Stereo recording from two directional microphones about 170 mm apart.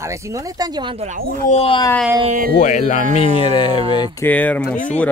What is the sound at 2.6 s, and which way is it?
Speech, 45° left (ahead or behind).